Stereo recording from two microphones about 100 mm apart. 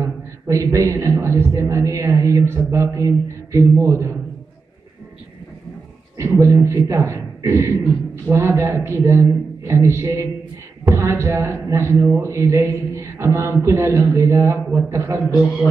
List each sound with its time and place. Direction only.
0.0 s a sound: 35° right (ahead or behind)
1.2 s a man's voice: 30° right (ahead or behind)
6.1 s a man's voice: 30° right (ahead or behind)